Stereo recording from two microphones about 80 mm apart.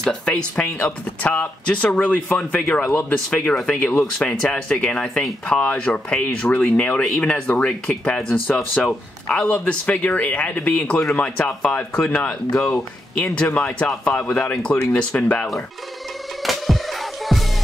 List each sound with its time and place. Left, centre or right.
0.0 s speech: centre
16.4 s music: centre